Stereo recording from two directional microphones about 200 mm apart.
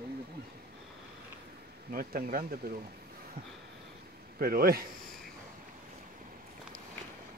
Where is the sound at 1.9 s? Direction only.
45° right (ahead or behind).